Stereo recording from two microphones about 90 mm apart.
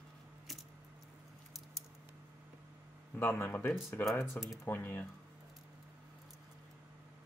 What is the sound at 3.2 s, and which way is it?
Speech, 25° left (ahead or behind).